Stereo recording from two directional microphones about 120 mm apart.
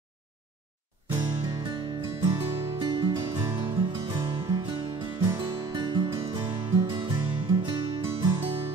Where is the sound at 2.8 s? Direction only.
40° right (ahead or behind).